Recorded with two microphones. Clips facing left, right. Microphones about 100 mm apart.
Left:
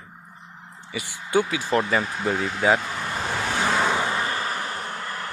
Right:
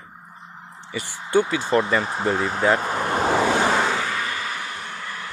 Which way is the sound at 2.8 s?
40° right (ahead or behind).